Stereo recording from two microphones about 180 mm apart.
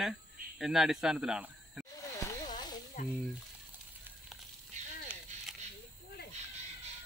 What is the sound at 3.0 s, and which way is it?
Speech, 45° left (ahead or behind).